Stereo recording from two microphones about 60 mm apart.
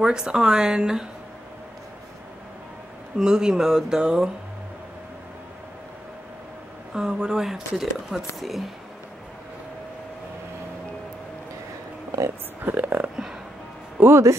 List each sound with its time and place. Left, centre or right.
0.0 s speech: centre
3.2 s speech: centre
6.9 s speech: centre
12.6 s speech: right
13.1 s music: centre
14.0 s speech: right